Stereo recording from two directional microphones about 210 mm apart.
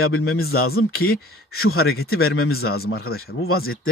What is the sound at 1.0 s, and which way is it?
Speech, 45° left (ahead or behind).